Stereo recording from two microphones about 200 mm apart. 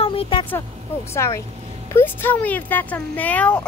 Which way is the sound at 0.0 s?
30° left (ahead or behind).